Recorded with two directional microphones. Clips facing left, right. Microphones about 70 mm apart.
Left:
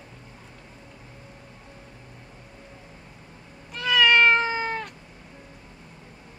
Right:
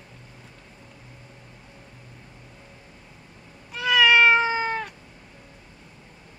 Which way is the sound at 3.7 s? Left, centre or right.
Centre.